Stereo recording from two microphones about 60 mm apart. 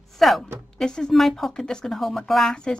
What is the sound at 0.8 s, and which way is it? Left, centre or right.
Speech, centre.